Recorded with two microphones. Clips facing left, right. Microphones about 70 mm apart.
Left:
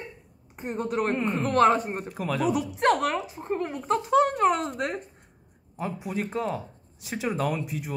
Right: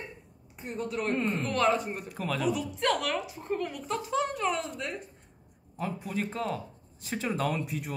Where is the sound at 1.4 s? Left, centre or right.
Left.